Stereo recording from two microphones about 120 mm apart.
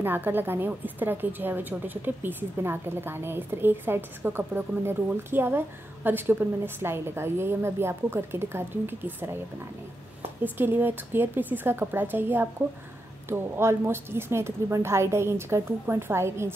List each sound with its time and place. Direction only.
0.0 s a woman's voice: 15° right (ahead or behind)
10.4 s a woman's voice: 15° right (ahead or behind)